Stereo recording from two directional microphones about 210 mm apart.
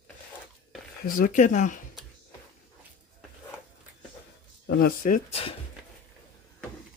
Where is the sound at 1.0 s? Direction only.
40° left (ahead or behind).